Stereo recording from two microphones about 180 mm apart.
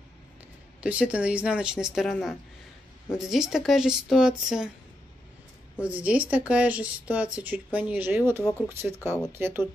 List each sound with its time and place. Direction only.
0.7 s speech: 5° right (ahead or behind)
3.3 s speech: centre (ahead or behind)
5.8 s speech: 5° right (ahead or behind)